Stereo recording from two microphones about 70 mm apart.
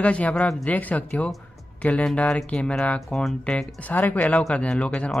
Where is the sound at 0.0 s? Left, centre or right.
Centre.